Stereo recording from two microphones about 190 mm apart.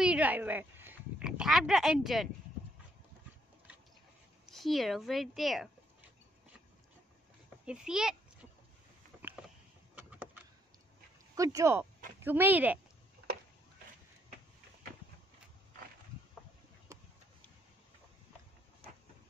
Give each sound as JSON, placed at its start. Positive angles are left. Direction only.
{"t": 0.0, "sound": "speech", "side_deg": -5}
{"t": 4.5, "sound": "a woman's voice", "side_deg": 0}
{"t": 7.4, "sound": "a sound", "side_deg": -5}
{"t": 9.9, "sound": "vehicle", "side_deg": -5}
{"t": 11.3, "sound": "speech", "side_deg": -15}
{"t": 16.9, "sound": "a sound", "side_deg": -15}